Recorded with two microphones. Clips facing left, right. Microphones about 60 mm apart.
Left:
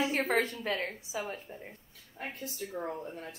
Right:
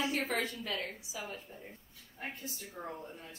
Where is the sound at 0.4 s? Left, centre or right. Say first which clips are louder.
Left 5 dB; left.